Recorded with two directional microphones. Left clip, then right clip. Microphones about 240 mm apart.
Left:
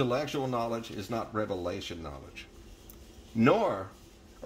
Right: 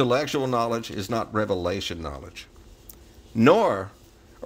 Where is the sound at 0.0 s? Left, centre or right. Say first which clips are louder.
Right 7 dB; right.